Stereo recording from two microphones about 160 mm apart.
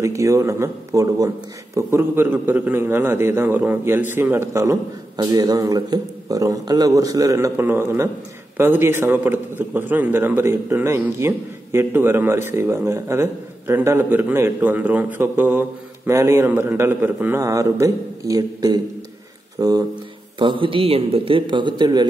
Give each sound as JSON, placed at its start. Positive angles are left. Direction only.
{"t": 0.0, "sound": "a man's voice", "side_deg": -20}